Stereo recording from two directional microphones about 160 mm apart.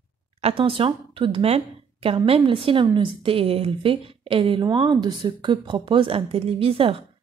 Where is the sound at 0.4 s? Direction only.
35° right (ahead or behind).